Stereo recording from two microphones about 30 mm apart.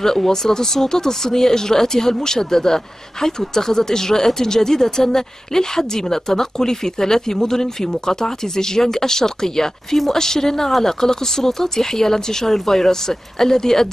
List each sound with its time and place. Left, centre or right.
0.0 s speech: centre